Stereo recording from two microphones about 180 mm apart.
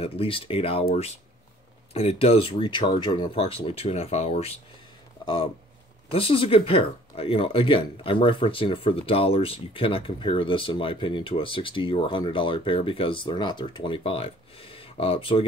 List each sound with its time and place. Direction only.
0.0 s speech: 30° left (ahead or behind)
2.0 s speech: 35° left (ahead or behind)